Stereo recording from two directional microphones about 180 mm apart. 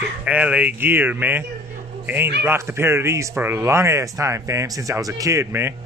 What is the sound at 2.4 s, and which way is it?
Speech, 15° right (ahead or behind).